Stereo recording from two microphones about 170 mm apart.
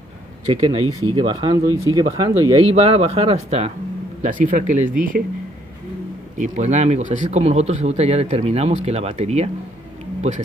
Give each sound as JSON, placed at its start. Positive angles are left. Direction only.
{"t": 0.5, "sound": "speech", "side_deg": -35}
{"t": 6.3, "sound": "speech", "side_deg": -45}